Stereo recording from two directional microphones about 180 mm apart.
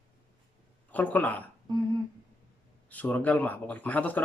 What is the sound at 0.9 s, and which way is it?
Speech, 10° left (ahead or behind).